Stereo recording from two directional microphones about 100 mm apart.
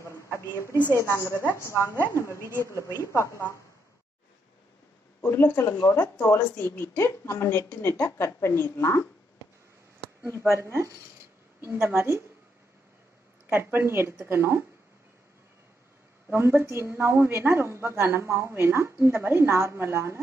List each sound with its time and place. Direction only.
0.0 s a sound: 30° left (ahead or behind)
0.7 s a woman's voice: 20° right (ahead or behind)
0.9 s a woman's voice: 30° left (ahead or behind)
2.0 s a woman's voice: 25° right (ahead or behind)
2.8 s a woman's voice: 30° left (ahead or behind)
5.2 s a woman's voice: 20° left (ahead or behind)
10.6 s a woman's voice: 30° right (ahead or behind)
13.5 s a woman's voice: 20° right (ahead or behind)
16.3 s a woman's voice: 20° right (ahead or behind)